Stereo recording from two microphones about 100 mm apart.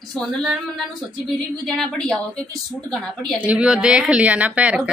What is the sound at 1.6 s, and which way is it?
A woman's voice, 5° left (ahead or behind).